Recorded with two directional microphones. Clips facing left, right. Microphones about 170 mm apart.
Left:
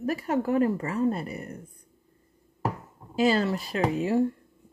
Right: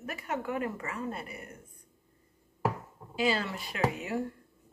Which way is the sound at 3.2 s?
40° left (ahead or behind).